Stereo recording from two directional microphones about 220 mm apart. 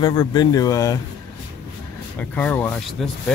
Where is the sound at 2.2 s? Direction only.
5° left (ahead or behind).